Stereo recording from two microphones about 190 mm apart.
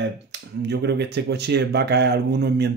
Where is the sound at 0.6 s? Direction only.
60° right (ahead or behind).